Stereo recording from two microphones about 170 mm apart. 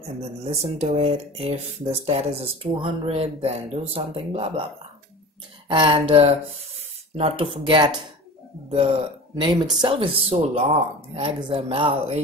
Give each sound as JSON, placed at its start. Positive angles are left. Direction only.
{"t": 0.4, "sound": "speech", "side_deg": -40}
{"t": 5.7, "sound": "speech", "side_deg": -30}
{"t": 9.4, "sound": "speech", "side_deg": -25}